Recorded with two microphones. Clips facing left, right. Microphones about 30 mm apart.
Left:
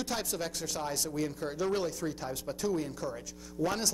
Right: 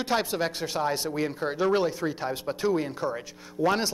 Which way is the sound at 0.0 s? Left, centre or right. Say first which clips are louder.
Right 8 dB; right.